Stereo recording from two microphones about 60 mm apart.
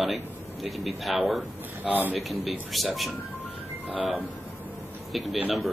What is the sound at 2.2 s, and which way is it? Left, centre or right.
Speech, centre.